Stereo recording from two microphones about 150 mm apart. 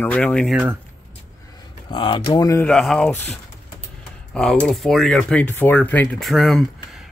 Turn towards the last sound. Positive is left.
turn(degrees=0)  # may be behind; listen again after turning